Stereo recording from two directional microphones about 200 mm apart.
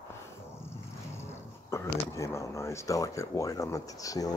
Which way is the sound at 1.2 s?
15° left (ahead or behind).